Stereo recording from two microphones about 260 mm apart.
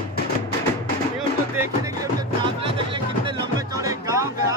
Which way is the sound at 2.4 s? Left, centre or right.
Centre.